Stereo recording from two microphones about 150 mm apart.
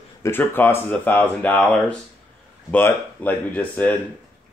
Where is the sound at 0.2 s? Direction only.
15° left (ahead or behind).